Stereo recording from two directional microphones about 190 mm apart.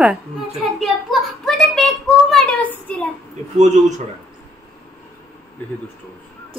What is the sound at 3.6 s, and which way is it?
Speech, 40° right (ahead or behind).